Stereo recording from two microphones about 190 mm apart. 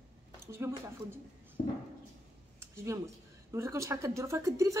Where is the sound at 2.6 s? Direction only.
15° right (ahead or behind).